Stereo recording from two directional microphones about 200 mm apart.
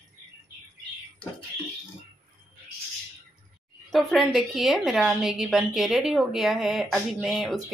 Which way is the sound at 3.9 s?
Centre (ahead or behind).